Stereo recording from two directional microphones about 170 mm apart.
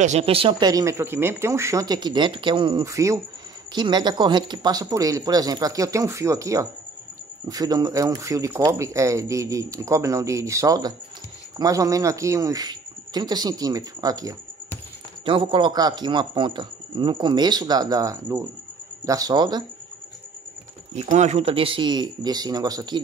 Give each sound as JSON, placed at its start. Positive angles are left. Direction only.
{"t": 0.0, "sound": "speech", "side_deg": -40}
{"t": 20.9, "sound": "speech", "side_deg": -40}